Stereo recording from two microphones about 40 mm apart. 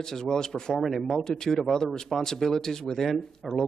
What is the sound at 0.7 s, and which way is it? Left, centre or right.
Speech, centre.